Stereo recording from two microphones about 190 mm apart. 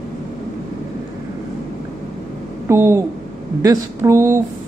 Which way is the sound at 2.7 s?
15° right (ahead or behind).